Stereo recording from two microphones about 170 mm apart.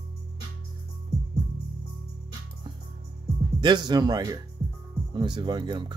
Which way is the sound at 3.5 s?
25° right (ahead or behind).